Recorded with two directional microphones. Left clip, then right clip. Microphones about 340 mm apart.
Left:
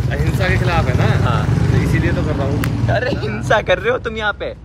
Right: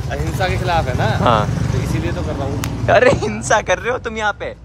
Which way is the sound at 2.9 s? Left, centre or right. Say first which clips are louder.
Right 9 dB; right.